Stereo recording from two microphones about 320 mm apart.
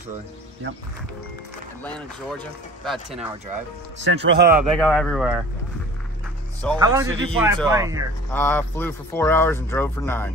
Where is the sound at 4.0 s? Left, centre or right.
Right.